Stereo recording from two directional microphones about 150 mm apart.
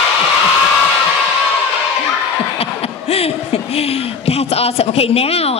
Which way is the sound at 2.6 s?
40° left (ahead or behind).